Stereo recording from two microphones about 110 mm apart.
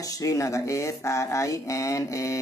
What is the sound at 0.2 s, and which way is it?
Speech, 30° left (ahead or behind).